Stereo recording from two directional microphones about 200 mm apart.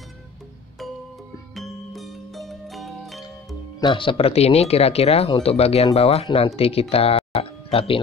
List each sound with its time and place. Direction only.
1.5 s music: centre (ahead or behind)
3.8 s speech: 25° left (ahead or behind)